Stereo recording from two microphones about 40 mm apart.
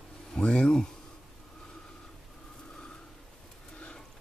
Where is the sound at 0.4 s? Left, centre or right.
Left.